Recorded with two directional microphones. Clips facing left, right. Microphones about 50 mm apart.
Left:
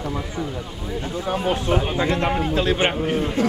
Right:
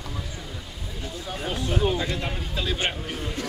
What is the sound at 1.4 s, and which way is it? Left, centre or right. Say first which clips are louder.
A man's voice: left 3 dB; left.